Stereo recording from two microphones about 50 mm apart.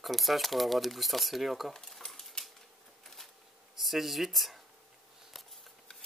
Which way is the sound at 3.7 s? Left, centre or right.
Centre.